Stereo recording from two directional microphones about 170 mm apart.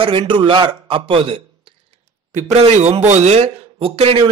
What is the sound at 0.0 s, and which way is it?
A man's voice, 30° right (ahead or behind).